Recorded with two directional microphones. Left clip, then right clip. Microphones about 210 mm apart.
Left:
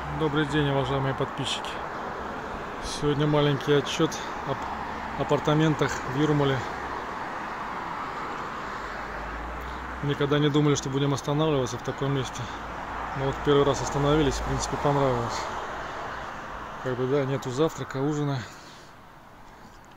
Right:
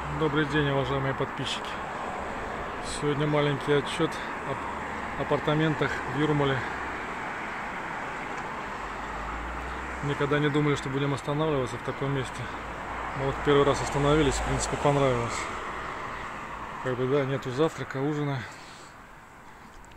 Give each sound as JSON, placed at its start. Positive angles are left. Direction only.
{"t": 0.2, "sound": "speech", "side_deg": 10}
{"t": 3.0, "sound": "speech", "side_deg": 20}
{"t": 5.3, "sound": "speech", "side_deg": 25}
{"t": 10.0, "sound": "speech", "side_deg": 20}
{"t": 13.5, "sound": "speech", "side_deg": 10}
{"t": 17.1, "sound": "speech", "side_deg": 15}